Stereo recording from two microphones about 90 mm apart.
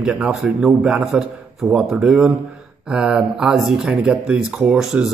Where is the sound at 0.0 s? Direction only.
10° right (ahead or behind).